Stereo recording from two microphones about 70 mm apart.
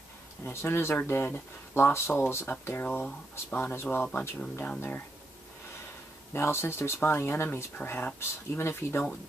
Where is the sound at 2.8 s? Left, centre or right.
Left.